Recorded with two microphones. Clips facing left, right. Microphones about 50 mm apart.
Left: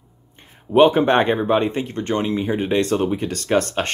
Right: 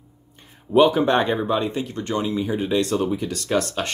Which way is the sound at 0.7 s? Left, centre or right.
Left.